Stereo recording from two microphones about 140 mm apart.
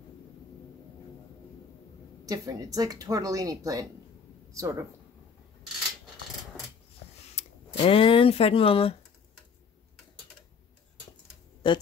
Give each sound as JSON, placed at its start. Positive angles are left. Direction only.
{"t": 2.2, "sound": "speech", "side_deg": -25}
{"t": 7.3, "sound": "speech", "side_deg": 45}
{"t": 11.6, "sound": "speech", "side_deg": 35}